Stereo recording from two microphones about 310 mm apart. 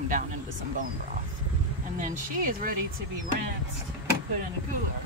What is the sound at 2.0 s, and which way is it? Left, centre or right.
Speech, right.